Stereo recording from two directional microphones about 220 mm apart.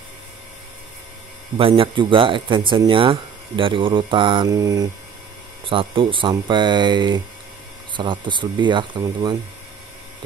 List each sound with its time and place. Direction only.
1.6 s speech: 25° right (ahead or behind)